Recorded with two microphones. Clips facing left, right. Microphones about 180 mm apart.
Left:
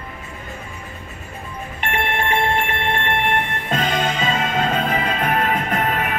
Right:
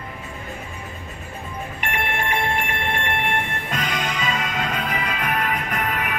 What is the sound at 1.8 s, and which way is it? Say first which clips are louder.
Telephone: left 4 dB; 25° left (ahead or behind).